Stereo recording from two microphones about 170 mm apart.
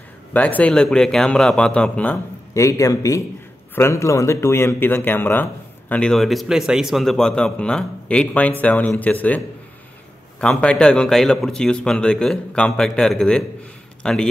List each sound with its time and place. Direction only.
0.3 s a man's voice: 10° left (ahead or behind)
2.5 s a man's voice: 20° left (ahead or behind)
10.4 s a man's voice: 5° left (ahead or behind)